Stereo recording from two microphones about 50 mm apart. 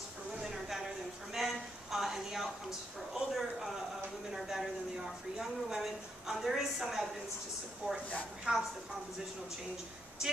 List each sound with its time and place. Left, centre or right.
0.4 s a sound: centre
8.5 s a woman's voice: right
10.2 s speech: centre